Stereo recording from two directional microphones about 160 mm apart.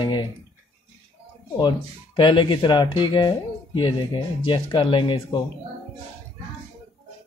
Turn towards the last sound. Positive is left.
turn(degrees=30)  # may be behind; listen again after turning